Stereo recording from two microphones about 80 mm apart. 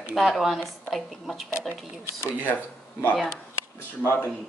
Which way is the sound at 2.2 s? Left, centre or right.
Left.